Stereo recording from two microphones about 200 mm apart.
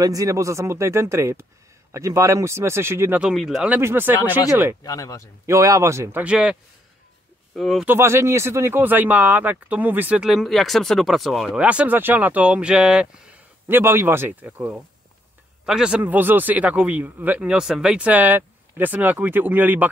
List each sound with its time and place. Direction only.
0.0 s speech: 15° right (ahead or behind)
4.8 s speech: 15° left (ahead or behind)
5.5 s speech: 15° right (ahead or behind); by 7.9 s centre (ahead or behind)
7.9 s speech: 15° right (ahead or behind)